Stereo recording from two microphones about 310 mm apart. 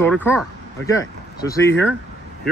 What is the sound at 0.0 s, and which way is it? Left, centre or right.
Speech, centre.